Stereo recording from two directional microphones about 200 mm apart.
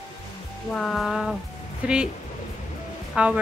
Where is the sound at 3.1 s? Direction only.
5° right (ahead or behind).